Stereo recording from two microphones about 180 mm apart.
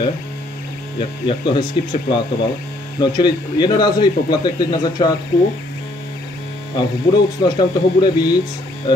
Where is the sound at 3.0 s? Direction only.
25° left (ahead or behind).